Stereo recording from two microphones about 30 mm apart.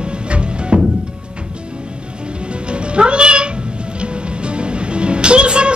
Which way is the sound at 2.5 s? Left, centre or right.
Right.